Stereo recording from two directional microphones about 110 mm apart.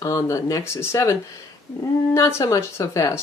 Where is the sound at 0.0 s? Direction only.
30° left (ahead or behind).